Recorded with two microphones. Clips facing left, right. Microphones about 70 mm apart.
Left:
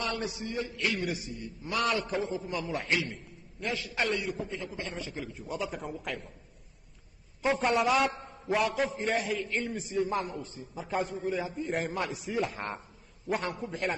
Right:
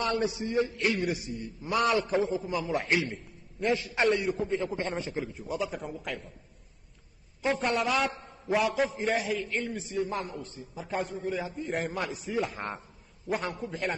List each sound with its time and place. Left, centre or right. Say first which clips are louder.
0.0 s a man's voice: right 5 dB; right
5.3 s a man's voice: right 2 dB; centre
7.5 s a man's voice: left 2 dB; centre